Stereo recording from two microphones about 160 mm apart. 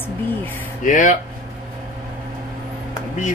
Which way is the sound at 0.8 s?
50° left (ahead or behind).